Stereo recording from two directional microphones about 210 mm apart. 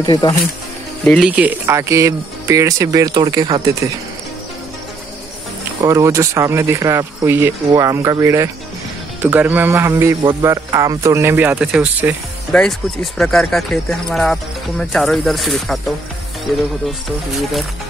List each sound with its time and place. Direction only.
0.0 s speech: 20° left (ahead or behind)
1.0 s speech: 5° left (ahead or behind)
1.3 s speech: 5° right (ahead or behind)
5.8 s speech: 15° right (ahead or behind)